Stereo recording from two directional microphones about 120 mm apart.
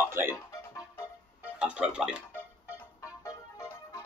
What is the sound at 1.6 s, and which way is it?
Speech, 10° right (ahead or behind).